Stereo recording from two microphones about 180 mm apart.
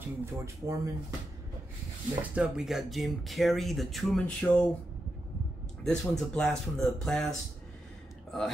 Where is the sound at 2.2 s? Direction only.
5° right (ahead or behind).